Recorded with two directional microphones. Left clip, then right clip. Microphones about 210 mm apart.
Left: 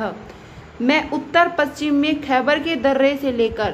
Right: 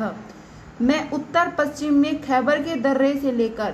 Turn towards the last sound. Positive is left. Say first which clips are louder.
# left 3 dB
turn(degrees=-5)  # may be behind; listen again after turning